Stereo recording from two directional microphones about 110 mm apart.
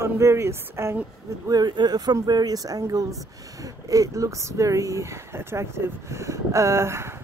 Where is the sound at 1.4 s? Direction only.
40° right (ahead or behind).